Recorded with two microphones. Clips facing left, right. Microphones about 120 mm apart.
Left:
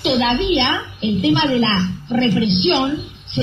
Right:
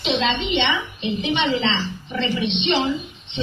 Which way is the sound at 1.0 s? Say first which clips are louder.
Left 8 dB; 60° left (ahead or behind).